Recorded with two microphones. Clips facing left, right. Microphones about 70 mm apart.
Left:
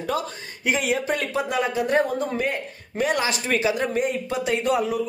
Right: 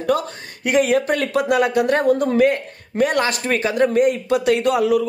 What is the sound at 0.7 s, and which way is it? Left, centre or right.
Speech, right.